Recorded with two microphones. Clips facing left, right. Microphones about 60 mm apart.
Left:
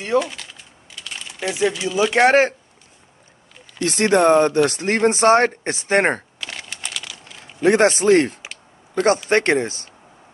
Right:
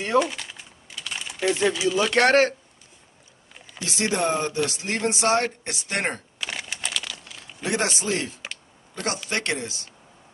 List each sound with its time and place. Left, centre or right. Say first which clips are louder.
0.0 s speech: left 2 dB; centre
1.0 s typing: right 1 dB; centre
1.5 s speech: left 1 dB; centre
2.0 s speech: left 5 dB; centre
3.8 s speech: left 9 dB; left
6.4 s crumpling: right 1 dB; centre
7.6 s a man's voice: left 11 dB; left